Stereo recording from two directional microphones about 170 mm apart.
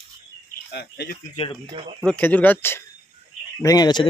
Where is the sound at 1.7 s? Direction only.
35° right (ahead or behind).